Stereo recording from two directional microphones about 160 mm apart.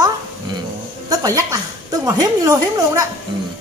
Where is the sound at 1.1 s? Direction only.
20° right (ahead or behind).